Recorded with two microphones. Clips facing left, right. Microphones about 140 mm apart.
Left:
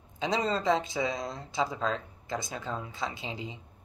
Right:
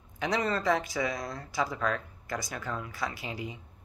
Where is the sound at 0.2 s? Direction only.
20° left (ahead or behind).